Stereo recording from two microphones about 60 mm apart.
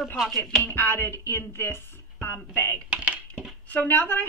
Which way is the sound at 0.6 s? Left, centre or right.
Left.